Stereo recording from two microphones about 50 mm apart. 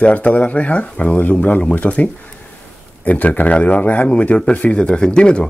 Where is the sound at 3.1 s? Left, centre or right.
Left.